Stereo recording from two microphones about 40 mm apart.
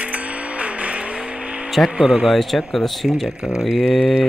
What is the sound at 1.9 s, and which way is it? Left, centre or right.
Speech, centre.